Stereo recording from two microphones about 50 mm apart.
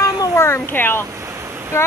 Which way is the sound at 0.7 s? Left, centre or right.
Left.